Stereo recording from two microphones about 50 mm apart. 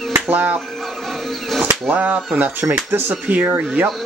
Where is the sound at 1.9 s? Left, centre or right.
Right.